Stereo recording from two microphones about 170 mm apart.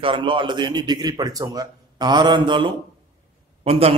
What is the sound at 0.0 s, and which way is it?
A man's voice, 30° right (ahead or behind).